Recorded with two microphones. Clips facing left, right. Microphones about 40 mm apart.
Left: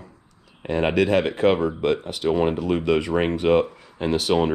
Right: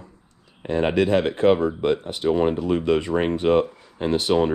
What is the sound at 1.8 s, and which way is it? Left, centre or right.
Speech, left.